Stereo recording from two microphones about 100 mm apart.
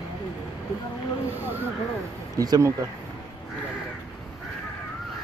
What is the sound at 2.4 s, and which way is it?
Speech, 35° right (ahead or behind).